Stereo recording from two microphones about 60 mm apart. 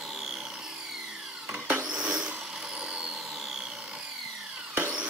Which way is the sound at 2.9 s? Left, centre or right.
Centre.